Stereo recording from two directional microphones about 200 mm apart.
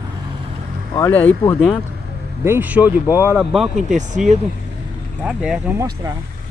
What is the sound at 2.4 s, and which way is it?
Speech, 10° right (ahead or behind).